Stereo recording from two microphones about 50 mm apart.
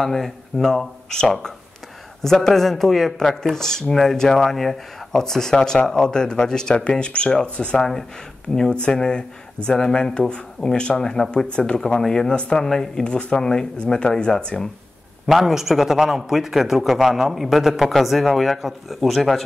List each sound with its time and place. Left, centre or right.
0.0 s speech: centre
15.2 s a man's voice: centre